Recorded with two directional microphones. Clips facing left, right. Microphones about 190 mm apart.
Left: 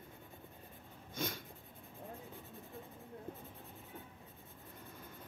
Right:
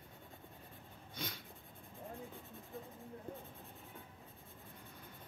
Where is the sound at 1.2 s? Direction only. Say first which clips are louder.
Left 6 dB; 45° left (ahead or behind).